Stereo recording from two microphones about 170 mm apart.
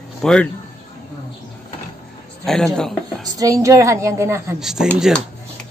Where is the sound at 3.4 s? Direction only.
20° right (ahead or behind).